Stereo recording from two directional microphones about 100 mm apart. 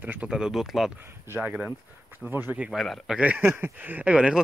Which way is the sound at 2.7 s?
Centre (ahead or behind).